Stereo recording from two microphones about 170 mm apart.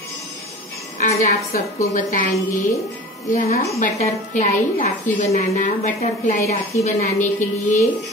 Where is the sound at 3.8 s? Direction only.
45° left (ahead or behind).